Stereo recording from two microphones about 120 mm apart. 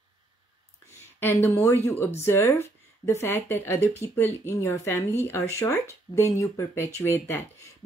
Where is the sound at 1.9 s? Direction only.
20° left (ahead or behind).